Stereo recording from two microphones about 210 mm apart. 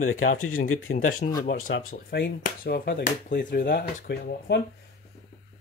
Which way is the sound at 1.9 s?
50° left (ahead or behind).